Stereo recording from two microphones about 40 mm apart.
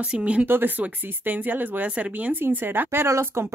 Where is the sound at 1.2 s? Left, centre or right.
Right.